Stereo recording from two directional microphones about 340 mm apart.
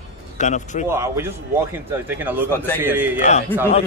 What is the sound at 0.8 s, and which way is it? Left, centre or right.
Speech, centre.